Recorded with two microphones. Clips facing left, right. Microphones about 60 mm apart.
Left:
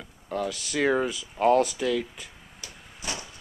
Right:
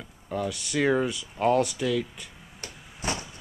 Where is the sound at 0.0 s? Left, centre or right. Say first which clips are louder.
Even; centre.